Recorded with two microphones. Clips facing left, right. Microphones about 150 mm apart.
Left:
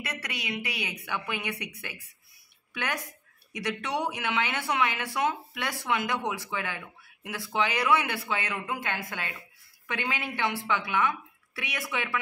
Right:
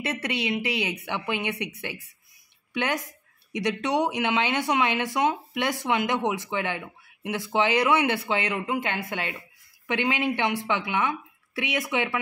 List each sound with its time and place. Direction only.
0.0 s speech: 25° right (ahead or behind)
2.7 s speech: 20° right (ahead or behind)